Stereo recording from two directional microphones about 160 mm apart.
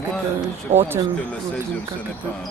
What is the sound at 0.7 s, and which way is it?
Speech, 40° right (ahead or behind).